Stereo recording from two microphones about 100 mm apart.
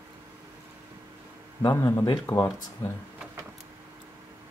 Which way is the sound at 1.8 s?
30° left (ahead or behind).